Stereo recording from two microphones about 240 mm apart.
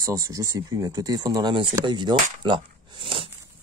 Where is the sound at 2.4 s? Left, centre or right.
Centre.